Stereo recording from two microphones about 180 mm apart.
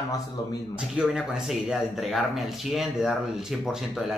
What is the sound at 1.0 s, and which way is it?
Speech, 5° right (ahead or behind).